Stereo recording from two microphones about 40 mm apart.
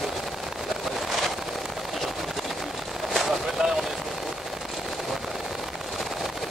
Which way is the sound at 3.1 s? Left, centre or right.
Centre.